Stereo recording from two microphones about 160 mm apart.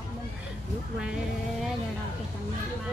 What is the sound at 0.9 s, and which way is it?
Music, 5° right (ahead or behind).